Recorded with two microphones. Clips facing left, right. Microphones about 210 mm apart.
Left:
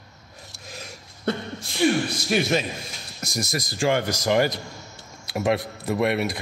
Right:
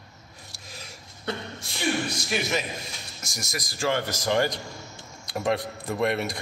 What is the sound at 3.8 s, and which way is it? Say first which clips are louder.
A man's voice: left 4 dB; 15° left (ahead or behind).